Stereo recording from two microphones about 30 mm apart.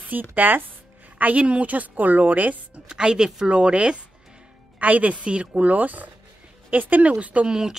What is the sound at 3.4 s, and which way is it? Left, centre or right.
Speech, right.